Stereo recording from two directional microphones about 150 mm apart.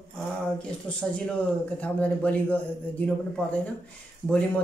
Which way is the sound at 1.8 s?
10° left (ahead or behind).